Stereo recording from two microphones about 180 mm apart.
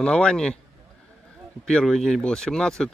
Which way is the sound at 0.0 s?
5° left (ahead or behind).